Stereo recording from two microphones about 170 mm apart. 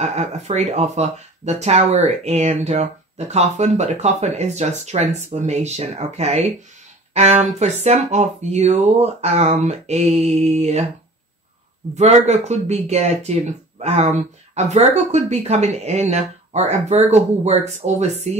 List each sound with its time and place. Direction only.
0.0 s speech: 40° right (ahead or behind)
11.9 s speech: 40° right (ahead or behind)